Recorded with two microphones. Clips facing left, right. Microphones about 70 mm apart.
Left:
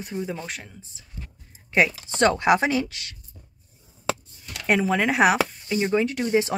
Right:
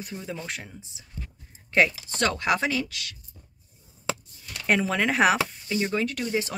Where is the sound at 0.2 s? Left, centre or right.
Centre.